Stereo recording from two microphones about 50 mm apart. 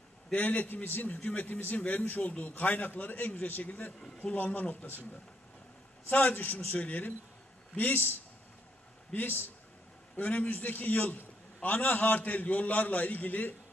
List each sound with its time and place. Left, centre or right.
0.4 s a man's voice: left
6.0 s a man's voice: left
6.8 s a man's voice: left
9.1 s speech: left
10.1 s a man's voice: left